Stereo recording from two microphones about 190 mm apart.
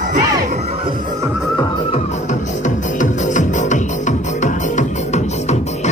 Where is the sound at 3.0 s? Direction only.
40° left (ahead or behind).